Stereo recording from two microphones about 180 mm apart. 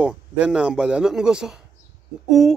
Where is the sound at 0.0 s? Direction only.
5° right (ahead or behind).